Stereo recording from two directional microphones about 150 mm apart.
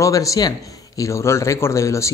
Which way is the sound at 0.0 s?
20° left (ahead or behind).